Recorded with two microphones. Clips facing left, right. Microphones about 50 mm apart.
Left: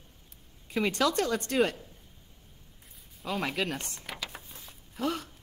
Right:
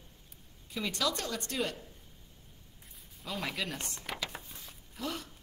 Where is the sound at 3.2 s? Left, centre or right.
Left.